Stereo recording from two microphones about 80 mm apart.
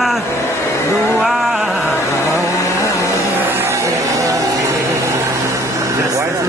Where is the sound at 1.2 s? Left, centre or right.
Centre.